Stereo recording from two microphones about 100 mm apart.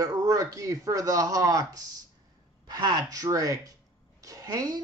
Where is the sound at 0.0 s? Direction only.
35° right (ahead or behind).